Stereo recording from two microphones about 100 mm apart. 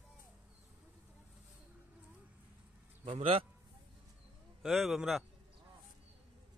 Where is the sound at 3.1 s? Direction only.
70° right (ahead or behind).